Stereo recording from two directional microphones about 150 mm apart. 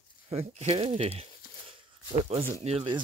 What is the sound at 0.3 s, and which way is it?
Speech, 45° right (ahead or behind).